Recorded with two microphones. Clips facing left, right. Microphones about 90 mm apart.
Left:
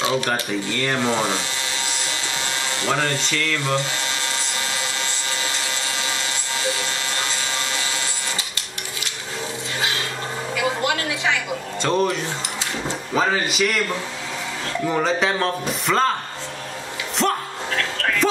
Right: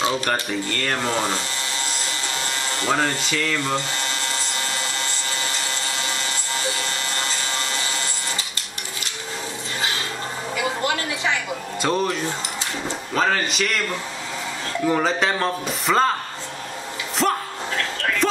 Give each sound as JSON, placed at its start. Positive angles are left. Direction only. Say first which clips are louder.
{"t": 0.0, "sound": "speech", "louder": "left 1 dB", "side_deg": 0}
{"t": 2.3, "sound": "a sound", "louder": "even", "side_deg": -40}
{"t": 2.8, "sound": "speech", "louder": "right 1 dB", "side_deg": 0}
{"t": 5.4, "sound": "wood", "louder": "left 1 dB", "side_deg": 0}
{"t": 6.6, "sound": "sawing", "louder": "left 3 dB", "side_deg": 0}
{"t": 11.8, "sound": "speech", "louder": "left 1 dB", "side_deg": 0}
{"t": 14.9, "sound": "speech", "louder": "even", "side_deg": 0}
{"t": 17.2, "sound": "music", "louder": "even", "side_deg": 0}